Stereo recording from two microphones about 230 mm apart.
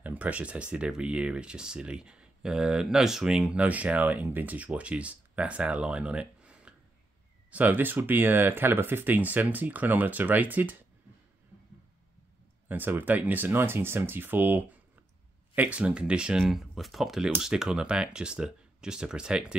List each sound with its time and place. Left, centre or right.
0.0 s speech: centre
12.6 s speech: centre